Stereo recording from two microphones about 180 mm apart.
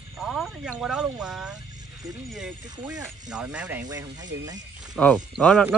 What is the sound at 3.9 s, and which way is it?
Speech, 20° right (ahead or behind).